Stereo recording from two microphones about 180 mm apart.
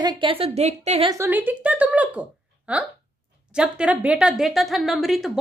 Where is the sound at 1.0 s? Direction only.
15° right (ahead or behind).